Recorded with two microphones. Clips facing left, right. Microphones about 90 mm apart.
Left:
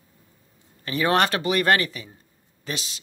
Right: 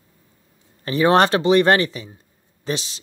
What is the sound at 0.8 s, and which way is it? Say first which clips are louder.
Speech: right 6 dB; 30° right (ahead or behind).